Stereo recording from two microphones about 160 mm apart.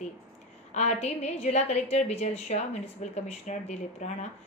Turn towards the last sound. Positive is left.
turn(degrees=45)  # may be behind; listen again after turning